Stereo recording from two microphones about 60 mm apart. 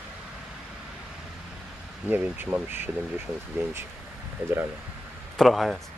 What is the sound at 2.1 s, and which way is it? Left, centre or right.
Speech, right.